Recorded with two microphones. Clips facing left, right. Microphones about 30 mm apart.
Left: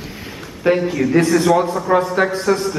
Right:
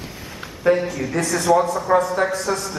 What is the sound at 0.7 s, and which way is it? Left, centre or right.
Speech, left.